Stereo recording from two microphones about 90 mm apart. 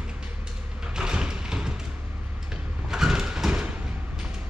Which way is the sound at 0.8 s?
10° right (ahead or behind).